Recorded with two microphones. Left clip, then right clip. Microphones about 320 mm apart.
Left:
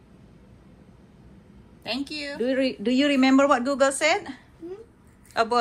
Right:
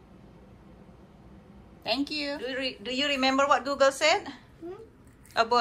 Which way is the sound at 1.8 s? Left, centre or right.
Centre.